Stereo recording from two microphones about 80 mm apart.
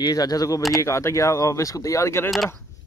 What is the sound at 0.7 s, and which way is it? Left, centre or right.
Speech, left.